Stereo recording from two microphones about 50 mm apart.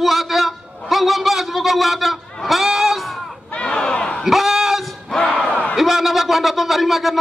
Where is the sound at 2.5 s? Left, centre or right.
Centre.